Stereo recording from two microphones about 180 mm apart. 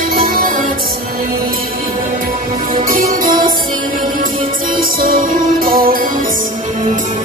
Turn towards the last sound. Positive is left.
turn(degrees=-50)  # may be behind; listen again after turning